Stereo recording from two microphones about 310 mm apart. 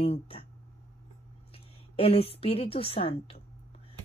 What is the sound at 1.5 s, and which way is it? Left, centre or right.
A woman's voice, centre.